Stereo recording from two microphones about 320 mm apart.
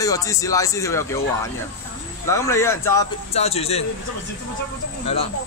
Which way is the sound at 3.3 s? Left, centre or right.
Centre.